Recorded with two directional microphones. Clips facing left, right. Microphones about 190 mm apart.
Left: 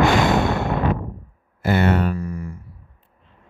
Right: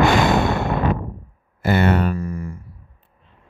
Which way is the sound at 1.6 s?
60° right (ahead or behind).